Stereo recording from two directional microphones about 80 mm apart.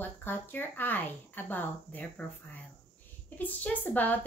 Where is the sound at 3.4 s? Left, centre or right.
Left.